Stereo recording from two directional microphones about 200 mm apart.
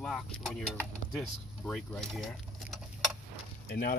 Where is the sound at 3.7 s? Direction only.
45° left (ahead or behind).